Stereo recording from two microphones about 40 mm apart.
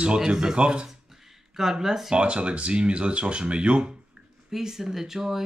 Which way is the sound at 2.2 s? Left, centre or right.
Right.